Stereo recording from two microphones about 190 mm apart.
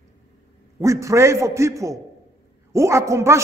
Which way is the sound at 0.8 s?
15° right (ahead or behind).